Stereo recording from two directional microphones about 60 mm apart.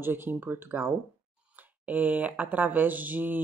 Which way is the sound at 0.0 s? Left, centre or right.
Right.